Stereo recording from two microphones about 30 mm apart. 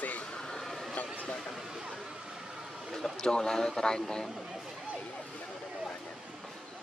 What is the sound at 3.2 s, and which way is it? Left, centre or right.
Speech, left.